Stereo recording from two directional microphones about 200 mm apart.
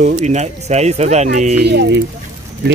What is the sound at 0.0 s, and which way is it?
Speech, 35° right (ahead or behind).